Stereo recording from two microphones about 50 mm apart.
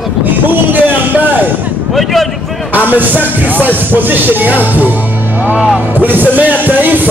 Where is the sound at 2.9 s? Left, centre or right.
Right.